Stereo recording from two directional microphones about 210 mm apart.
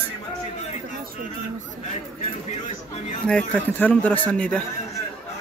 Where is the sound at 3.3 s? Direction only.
5° left (ahead or behind).